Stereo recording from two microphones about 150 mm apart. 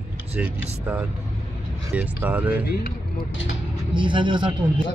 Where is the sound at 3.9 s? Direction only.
35° right (ahead or behind).